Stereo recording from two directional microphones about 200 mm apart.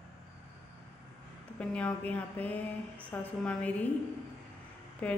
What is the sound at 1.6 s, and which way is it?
A woman's voice, 5° left (ahead or behind).